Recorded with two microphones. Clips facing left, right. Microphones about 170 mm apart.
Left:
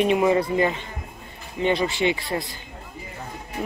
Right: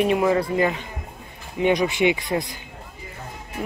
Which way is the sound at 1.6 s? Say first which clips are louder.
Right 3 dB; 15° right (ahead or behind).